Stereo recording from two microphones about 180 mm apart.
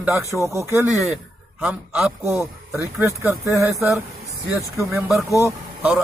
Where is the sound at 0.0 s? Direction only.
15° right (ahead or behind).